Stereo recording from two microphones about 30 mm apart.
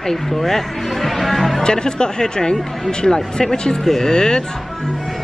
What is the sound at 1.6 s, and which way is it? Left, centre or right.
Speech, left.